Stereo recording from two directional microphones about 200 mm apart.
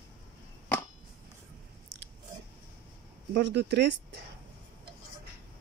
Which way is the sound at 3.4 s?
55° right (ahead or behind).